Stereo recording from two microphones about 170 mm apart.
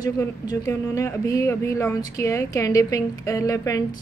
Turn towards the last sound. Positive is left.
turn(degrees=20)  # may be behind; listen again after turning